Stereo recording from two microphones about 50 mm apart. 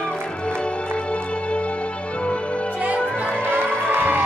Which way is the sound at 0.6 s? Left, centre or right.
Left.